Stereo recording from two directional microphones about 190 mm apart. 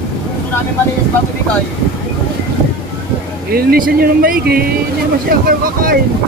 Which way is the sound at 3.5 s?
55° right (ahead or behind).